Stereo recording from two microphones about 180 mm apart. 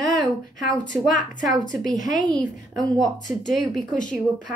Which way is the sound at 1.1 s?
45° left (ahead or behind).